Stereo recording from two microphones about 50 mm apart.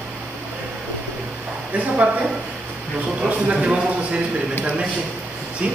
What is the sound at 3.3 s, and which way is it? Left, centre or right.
Speech, right.